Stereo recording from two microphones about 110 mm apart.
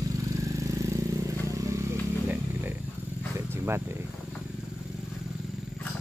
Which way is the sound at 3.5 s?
20° right (ahead or behind).